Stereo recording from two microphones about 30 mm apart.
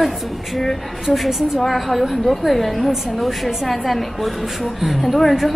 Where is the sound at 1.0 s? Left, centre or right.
Centre.